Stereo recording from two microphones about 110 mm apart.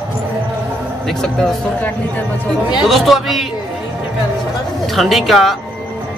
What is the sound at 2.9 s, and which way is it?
Speech, centre (ahead or behind).